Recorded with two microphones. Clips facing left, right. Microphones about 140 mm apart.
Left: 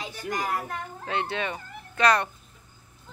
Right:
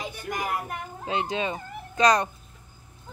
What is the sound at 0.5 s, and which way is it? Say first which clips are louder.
Speech: even; 15° right (ahead or behind).